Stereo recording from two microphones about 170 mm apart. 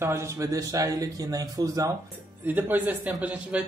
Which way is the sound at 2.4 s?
10° right (ahead or behind).